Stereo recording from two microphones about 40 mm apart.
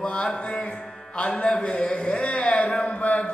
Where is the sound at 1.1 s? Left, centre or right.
Left.